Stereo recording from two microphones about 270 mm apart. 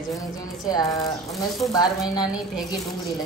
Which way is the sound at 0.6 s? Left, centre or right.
Centre.